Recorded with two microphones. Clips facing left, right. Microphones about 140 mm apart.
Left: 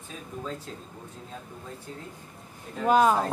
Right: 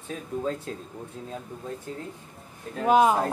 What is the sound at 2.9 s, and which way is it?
Speech, 15° right (ahead or behind).